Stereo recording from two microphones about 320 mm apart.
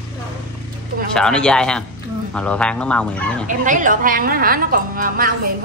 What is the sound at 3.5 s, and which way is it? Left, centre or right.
A woman's voice, right.